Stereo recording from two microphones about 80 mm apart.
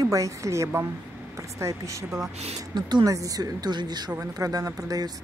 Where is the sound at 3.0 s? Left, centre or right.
Right.